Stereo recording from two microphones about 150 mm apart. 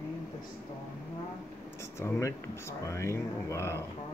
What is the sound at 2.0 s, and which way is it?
Speech, 20° left (ahead or behind).